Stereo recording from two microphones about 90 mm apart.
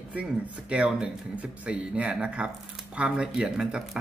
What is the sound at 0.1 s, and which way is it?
Speech, 15° right (ahead or behind).